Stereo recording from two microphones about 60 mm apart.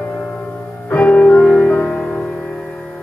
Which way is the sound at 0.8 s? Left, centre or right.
Left.